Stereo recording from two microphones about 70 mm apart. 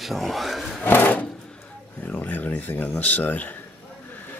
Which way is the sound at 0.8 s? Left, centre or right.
Left.